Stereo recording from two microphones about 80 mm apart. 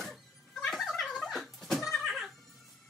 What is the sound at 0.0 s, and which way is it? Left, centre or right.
Music, centre.